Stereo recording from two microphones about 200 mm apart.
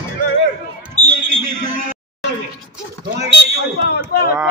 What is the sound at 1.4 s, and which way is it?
Speech, 45° right (ahead or behind).